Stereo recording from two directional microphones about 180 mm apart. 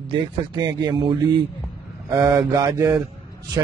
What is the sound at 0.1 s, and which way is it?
A man's voice, 25° right (ahead or behind).